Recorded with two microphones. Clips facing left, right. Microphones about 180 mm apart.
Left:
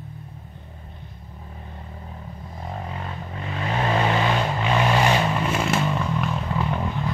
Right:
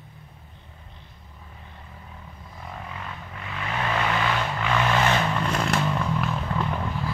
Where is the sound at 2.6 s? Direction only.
35° left (ahead or behind); by 6.8 s 5° left (ahead or behind).